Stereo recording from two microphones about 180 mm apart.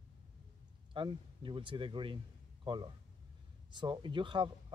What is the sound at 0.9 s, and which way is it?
A man's voice, 25° right (ahead or behind).